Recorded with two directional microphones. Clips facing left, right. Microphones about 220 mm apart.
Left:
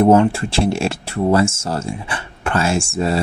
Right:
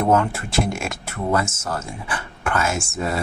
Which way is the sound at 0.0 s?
25° left (ahead or behind).